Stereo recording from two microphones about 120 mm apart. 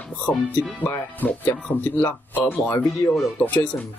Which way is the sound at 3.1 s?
10° left (ahead or behind).